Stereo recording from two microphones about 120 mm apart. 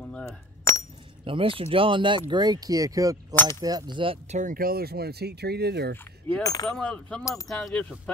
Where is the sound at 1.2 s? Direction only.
45° right (ahead or behind).